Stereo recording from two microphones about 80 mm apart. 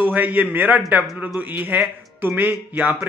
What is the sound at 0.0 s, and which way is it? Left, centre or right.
Speech, right.